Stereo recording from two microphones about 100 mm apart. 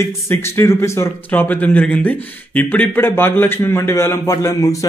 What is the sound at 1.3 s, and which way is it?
A man's voice, 15° left (ahead or behind).